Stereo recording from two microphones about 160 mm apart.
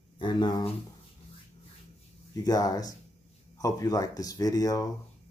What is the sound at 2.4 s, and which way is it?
Speech, 20° left (ahead or behind).